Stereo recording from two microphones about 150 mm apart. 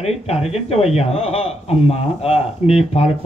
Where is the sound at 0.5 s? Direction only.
40° left (ahead or behind).